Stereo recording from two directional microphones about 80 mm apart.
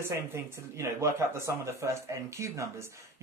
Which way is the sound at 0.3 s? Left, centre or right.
Right.